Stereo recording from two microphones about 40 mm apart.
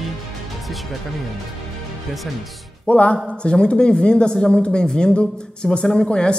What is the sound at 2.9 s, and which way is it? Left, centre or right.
Speech, left.